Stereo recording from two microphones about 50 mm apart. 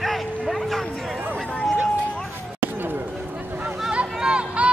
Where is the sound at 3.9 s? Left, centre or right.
Centre.